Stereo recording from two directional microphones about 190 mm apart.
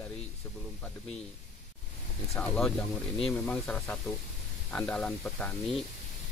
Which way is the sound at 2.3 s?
5° left (ahead or behind).